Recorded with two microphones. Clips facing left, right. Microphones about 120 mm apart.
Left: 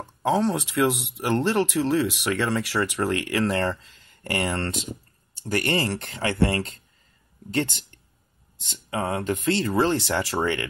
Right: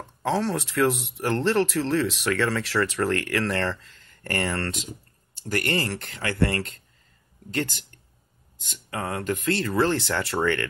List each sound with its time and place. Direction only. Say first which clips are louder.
0.0 s speech: left 3 dB; 20° left (ahead or behind)